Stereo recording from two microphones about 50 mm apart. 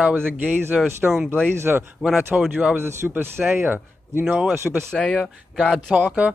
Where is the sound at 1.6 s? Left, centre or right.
Right.